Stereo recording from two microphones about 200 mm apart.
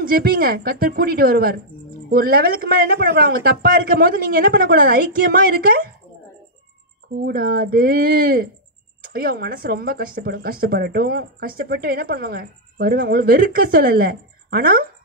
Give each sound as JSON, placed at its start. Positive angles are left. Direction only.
{"t": 0.0, "sound": "speech", "side_deg": -45}
{"t": 7.2, "sound": "speech", "side_deg": -45}